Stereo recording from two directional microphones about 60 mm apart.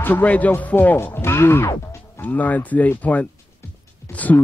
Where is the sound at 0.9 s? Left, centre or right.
Left.